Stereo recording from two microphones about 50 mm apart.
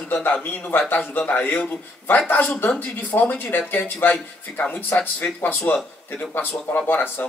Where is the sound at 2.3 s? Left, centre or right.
Left.